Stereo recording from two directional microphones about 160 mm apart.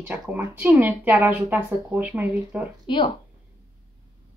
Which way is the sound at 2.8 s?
30° left (ahead or behind).